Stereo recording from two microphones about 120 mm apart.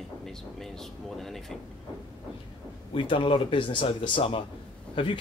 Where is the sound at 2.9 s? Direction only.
45° left (ahead or behind).